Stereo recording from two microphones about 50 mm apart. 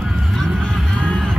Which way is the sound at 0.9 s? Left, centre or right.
Centre.